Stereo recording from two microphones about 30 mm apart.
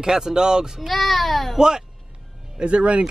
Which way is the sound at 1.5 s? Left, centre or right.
Right.